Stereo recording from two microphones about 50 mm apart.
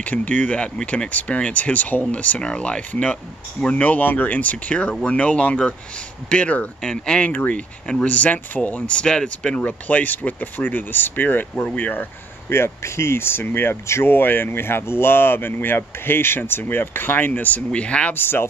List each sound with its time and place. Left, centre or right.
0.0 s speech: left
6.8 s speech: centre
7.2 s speech: left
8.9 s speech: centre
9.7 s speech: left
12.4 s speech: left
17.6 s speech: left
18.1 s speech: left